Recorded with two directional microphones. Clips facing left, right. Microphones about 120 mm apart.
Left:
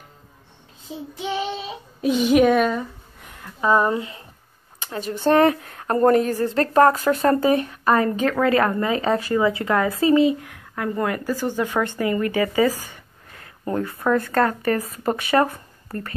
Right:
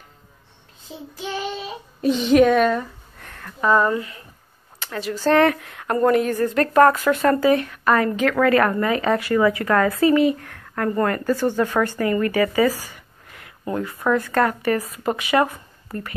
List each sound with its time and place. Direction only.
1.1 s child singing: 20° left (ahead or behind)
2.0 s a woman's voice: 10° left (ahead or behind); by 10.3 s 25° left (ahead or behind)
10.4 s a woman's voice: 10° left (ahead or behind); by 15.4 s 30° left (ahead or behind)